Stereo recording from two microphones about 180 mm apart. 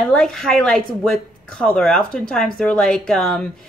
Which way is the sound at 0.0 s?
5° left (ahead or behind).